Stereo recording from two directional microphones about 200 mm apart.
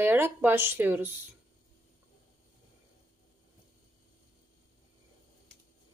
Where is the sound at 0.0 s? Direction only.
10° right (ahead or behind).